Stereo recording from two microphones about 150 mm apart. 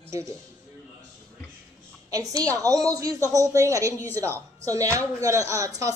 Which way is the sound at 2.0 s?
25° right (ahead or behind).